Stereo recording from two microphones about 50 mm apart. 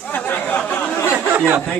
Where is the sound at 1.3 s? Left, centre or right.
Right.